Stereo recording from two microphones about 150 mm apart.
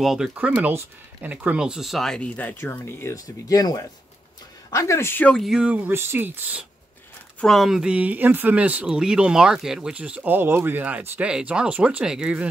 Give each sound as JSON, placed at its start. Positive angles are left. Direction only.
{"t": 0.0, "sound": "speech", "side_deg": -5}
{"t": 7.3, "sound": "speech", "side_deg": 0}